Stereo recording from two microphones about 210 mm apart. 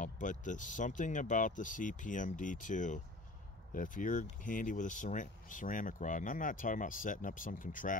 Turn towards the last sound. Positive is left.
turn(degrees=40)  # may be behind; listen again after turning